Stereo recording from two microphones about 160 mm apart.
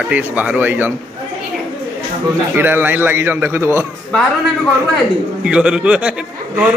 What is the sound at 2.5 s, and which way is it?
A man's voice, 10° right (ahead or behind).